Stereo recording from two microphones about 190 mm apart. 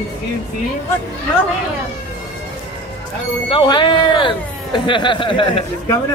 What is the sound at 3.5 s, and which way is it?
Speech, 25° left (ahead or behind).